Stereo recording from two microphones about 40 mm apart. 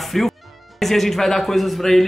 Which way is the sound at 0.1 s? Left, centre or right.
Centre.